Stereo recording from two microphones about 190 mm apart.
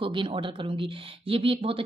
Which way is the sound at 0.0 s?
25° right (ahead or behind).